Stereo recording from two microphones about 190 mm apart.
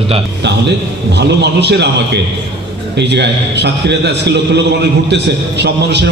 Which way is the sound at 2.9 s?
65° right (ahead or behind).